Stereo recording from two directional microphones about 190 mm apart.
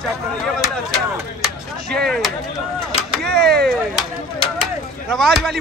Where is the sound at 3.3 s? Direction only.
55° right (ahead or behind).